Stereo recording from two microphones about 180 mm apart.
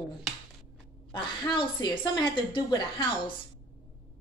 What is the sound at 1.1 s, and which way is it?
A woman's voice, 25° left (ahead or behind).